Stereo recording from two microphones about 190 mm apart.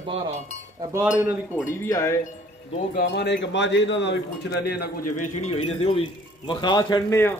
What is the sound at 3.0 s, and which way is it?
Speech, 60° left (ahead or behind).